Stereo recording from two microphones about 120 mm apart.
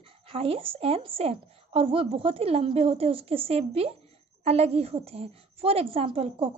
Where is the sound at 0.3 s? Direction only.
50° right (ahead or behind).